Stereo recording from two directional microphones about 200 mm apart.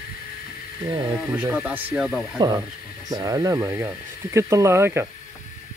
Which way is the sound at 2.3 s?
20° right (ahead or behind).